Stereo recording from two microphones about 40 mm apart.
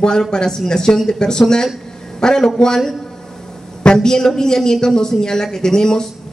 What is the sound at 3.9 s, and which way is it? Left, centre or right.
A man's voice, centre.